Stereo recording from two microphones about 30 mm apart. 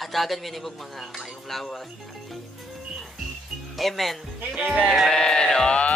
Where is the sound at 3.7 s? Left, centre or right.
Centre.